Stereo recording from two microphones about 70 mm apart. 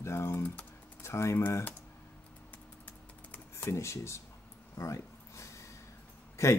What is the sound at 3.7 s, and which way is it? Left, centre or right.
Speech, left.